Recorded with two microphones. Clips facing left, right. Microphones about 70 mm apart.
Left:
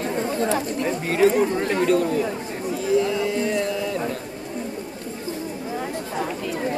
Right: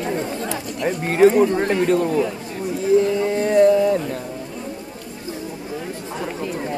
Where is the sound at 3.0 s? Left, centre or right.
Right.